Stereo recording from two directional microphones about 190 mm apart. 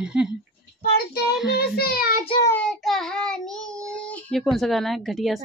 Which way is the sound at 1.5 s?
55° left (ahead or behind).